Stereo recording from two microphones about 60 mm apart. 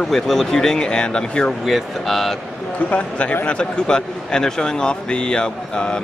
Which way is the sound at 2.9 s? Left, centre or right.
Left.